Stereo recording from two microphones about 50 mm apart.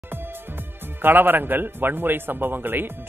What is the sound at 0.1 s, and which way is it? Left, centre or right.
Speech, right.